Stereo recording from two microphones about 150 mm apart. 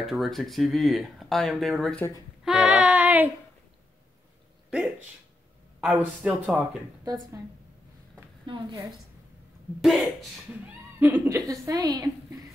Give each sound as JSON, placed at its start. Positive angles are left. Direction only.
{"t": 0.0, "sound": "speech", "side_deg": 0}
{"t": 2.4, "sound": "child singing", "side_deg": 0}
{"t": 4.6, "sound": "speech", "side_deg": -5}
{"t": 8.5, "sound": "a woman's voice", "side_deg": -30}
{"t": 9.8, "sound": "speech", "side_deg": 0}
{"t": 11.0, "sound": "a woman's voice", "side_deg": -10}